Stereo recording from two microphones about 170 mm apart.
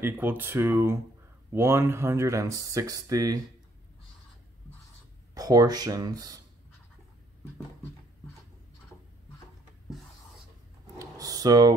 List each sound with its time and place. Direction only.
0.0 s speech: 10° right (ahead or behind)
5.3 s speech: 20° right (ahead or behind)
11.0 s a sound: 20° right (ahead or behind)